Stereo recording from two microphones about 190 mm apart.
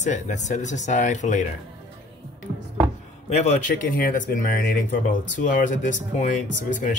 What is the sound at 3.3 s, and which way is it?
Speech, 35° left (ahead or behind).